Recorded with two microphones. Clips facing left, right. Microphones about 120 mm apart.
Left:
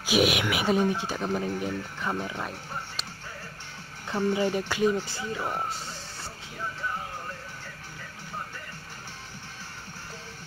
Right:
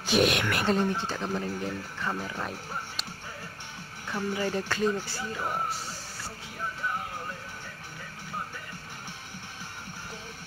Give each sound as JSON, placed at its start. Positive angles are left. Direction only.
{"t": 0.0, "sound": "speech", "side_deg": 5}
{"t": 4.1, "sound": "speech", "side_deg": 20}